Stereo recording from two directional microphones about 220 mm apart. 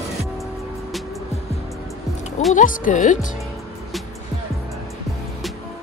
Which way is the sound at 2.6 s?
35° left (ahead or behind).